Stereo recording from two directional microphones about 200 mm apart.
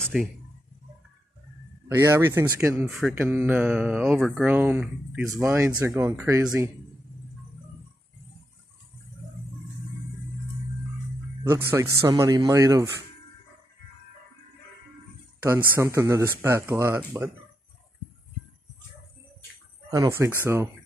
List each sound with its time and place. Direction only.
0.0 s a sound: centre (ahead or behind)
2.0 s speech: 15° right (ahead or behind)
2.9 s speech: 5° right (ahead or behind)
11.4 s speech: 15° right (ahead or behind)
15.4 s speech: 10° right (ahead or behind)
19.9 s speech: 15° right (ahead or behind)